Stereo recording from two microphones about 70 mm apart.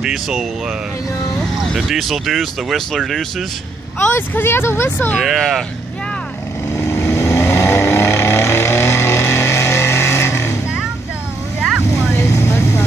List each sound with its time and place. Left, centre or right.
0.0 s speech: centre
4.0 s speech: left
5.2 s speech: centre
6.7 s vehicle: left
12.0 s vehicle: left